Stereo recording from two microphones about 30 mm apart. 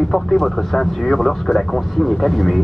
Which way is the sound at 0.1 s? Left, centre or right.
Centre.